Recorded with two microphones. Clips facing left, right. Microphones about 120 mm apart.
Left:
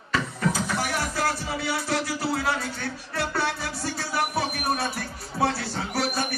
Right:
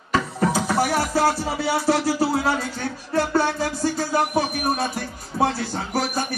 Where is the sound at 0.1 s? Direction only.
35° right (ahead or behind).